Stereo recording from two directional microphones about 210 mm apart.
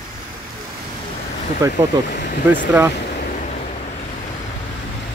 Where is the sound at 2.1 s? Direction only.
40° left (ahead or behind).